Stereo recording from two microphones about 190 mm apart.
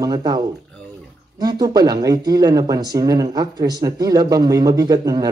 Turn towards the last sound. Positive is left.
turn(degrees=-20)  # may be behind; listen again after turning